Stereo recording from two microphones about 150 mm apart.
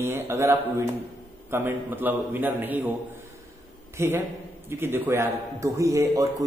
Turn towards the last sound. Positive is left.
turn(degrees=-20)  # may be behind; listen again after turning